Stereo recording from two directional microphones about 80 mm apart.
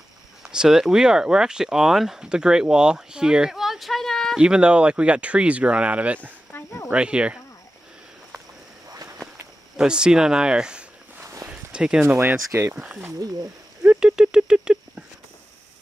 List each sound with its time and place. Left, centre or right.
0.4 s speech: centre
4.4 s speech: centre
6.5 s a sound: left
6.9 s speech: centre
8.9 s walk: right
9.8 s speech: centre
11.5 s a sound: centre
12.0 s speech: right
12.7 s speech: centre
13.8 s a sound: centre